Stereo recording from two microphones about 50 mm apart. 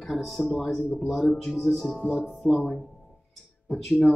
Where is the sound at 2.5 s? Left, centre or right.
Centre.